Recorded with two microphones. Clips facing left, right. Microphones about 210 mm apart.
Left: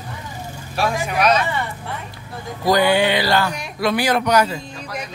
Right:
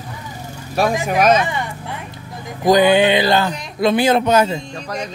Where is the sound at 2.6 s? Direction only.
20° right (ahead or behind).